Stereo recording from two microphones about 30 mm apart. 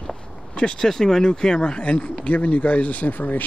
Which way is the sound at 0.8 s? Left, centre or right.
Left.